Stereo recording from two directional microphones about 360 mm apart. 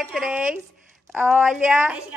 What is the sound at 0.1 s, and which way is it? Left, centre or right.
Speech, centre.